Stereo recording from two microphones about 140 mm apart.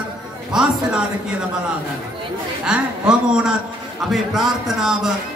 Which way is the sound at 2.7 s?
5° right (ahead or behind).